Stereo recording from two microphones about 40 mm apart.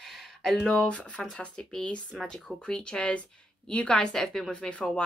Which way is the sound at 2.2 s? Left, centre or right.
Centre.